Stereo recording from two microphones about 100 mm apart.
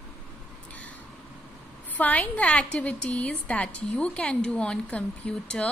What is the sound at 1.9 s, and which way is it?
A woman's voice, 15° left (ahead or behind).